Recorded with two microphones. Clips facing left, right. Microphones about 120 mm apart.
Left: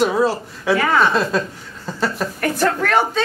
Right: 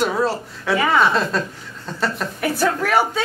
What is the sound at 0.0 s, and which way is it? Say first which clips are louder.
A woman's voice: left 3 dB; 5° left (ahead or behind).